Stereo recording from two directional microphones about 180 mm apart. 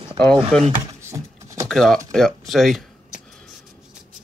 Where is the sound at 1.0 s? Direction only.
15° right (ahead or behind).